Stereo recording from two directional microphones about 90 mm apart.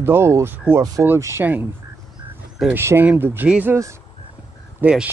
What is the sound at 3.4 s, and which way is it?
Speech, 15° right (ahead or behind).